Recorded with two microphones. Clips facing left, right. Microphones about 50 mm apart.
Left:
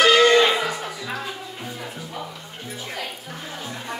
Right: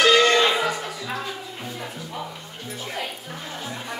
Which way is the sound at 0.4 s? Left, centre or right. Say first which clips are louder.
Left 1 dB; centre.